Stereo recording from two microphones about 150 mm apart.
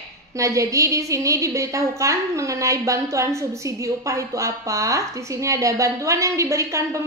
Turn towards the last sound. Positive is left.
turn(degrees=-20)  # may be behind; listen again after turning